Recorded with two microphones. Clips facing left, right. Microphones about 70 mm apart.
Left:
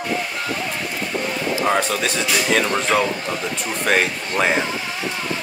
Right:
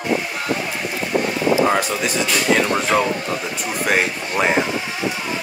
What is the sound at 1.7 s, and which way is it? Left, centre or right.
Speech, centre.